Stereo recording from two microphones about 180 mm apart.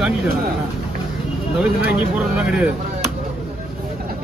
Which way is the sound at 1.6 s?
5° right (ahead or behind).